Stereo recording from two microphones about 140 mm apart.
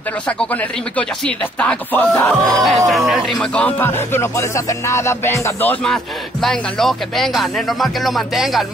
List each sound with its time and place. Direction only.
0.4 s music: 10° left (ahead or behind)
2.4 s speech: centre (ahead or behind)
3.1 s music: centre (ahead or behind); by 5.8 s 15° left (ahead or behind)
6.4 s speech: centre (ahead or behind)